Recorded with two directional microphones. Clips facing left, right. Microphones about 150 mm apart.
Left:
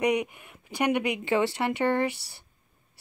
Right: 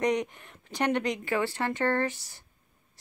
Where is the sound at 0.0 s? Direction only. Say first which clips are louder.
Left 2 dB; 10° left (ahead or behind).